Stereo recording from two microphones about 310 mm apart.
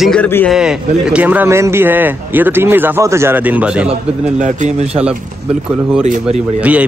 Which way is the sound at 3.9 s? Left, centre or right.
Right.